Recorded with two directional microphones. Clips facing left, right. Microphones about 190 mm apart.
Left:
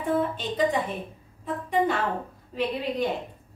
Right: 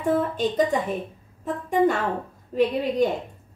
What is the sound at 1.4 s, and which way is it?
Speech, 45° right (ahead or behind).